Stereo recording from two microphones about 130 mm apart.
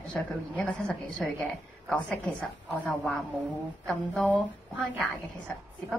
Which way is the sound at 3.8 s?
Centre (ahead or behind).